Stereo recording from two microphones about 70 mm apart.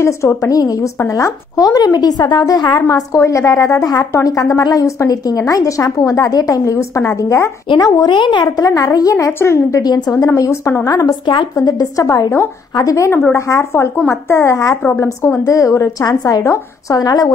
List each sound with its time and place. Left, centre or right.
0.0 s a woman's voice: left
0.6 s a woman's voice: left
3.2 s a woman's voice: left
7.7 s a woman's voice: left
9.1 s speech: left
9.8 s a woman's voice: left
10.2 s a woman's voice: left
10.9 s a woman's voice: left
14.9 s speech: left
15.4 s a woman's voice: left
16.1 s a woman's voice: left